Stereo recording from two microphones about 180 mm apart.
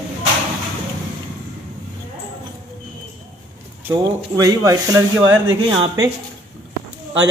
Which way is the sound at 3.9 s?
20° right (ahead or behind).